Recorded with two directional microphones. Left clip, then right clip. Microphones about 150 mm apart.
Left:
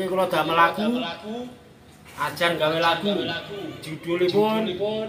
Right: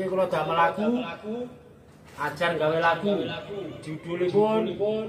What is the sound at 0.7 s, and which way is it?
Speech, 20° right (ahead or behind).